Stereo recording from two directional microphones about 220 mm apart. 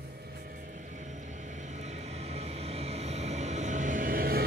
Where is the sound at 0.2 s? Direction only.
45° right (ahead or behind).